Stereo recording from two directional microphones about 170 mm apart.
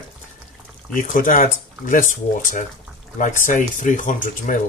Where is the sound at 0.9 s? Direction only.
50° left (ahead or behind).